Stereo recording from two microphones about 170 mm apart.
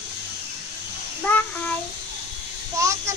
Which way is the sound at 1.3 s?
10° left (ahead or behind).